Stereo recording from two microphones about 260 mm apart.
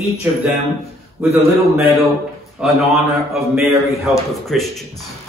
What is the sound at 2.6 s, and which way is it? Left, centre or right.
A man's voice, centre.